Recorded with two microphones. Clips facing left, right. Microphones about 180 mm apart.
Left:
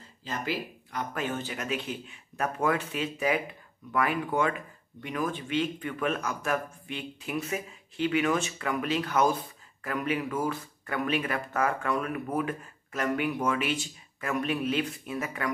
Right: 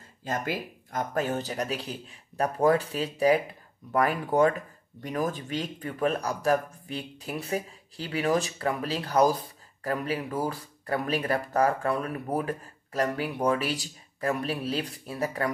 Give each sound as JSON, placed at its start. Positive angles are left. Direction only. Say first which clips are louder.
{"t": 0.2, "sound": "speech", "louder": "right 2 dB", "side_deg": -50}